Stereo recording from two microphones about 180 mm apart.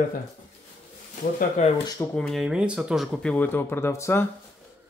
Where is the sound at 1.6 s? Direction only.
40° left (ahead or behind).